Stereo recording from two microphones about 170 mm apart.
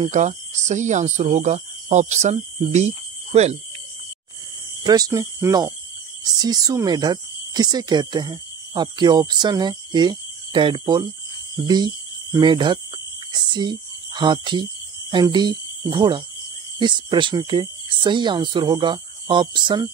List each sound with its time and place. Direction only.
0.0 s speech: 45° right (ahead or behind)
4.8 s speech: 20° right (ahead or behind)
13.3 s a sound: 25° right (ahead or behind)
16.8 s speech: 25° right (ahead or behind)